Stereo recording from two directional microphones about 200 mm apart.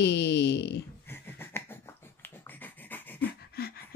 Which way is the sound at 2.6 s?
10° left (ahead or behind).